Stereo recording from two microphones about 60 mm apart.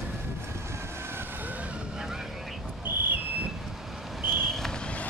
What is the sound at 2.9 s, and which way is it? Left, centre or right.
Whistle, right.